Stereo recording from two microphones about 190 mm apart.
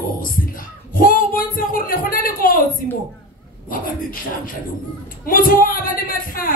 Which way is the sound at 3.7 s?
50° left (ahead or behind).